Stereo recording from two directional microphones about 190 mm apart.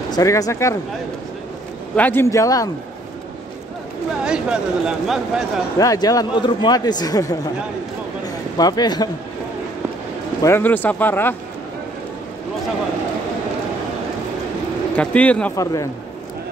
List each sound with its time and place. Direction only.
0.1 s speech: 20° left (ahead or behind)
2.0 s speech: 10° left (ahead or behind)
4.2 s speech: 5° right (ahead or behind)
5.8 s speech: 20° left (ahead or behind)
8.5 s speech: 20° left (ahead or behind)
10.4 s speech: 10° left (ahead or behind)
15.0 s speech: 5° left (ahead or behind)
15.5 s speech: 15° left (ahead or behind)